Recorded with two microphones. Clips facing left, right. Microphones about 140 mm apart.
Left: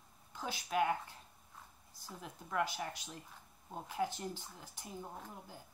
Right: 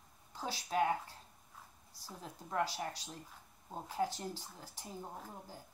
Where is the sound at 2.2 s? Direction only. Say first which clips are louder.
Even; 35° right (ahead or behind).